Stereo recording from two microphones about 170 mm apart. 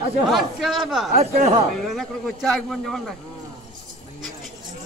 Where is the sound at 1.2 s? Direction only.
40° right (ahead or behind).